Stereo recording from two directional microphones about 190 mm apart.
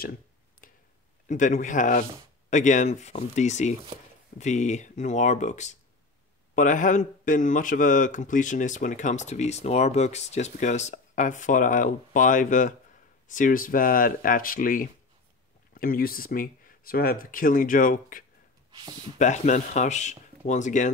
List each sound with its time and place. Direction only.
1.3 s speech: 40° left (ahead or behind)